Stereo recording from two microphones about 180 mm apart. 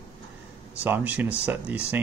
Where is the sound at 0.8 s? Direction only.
10° right (ahead or behind).